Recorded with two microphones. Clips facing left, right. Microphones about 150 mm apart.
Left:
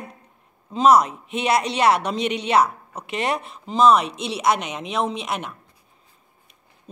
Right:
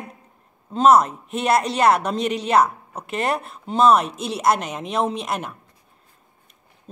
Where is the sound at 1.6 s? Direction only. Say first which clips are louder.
Right 1 dB; 45° right (ahead or behind).